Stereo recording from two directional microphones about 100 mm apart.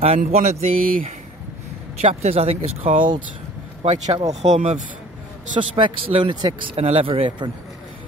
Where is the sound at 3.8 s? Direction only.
90° right.